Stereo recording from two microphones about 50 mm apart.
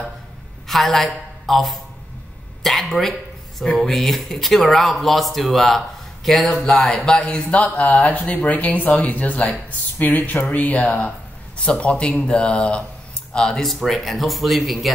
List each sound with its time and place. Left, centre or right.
0.7 s a woman's voice: centre; by 11.1 s left
11.8 s speech: centre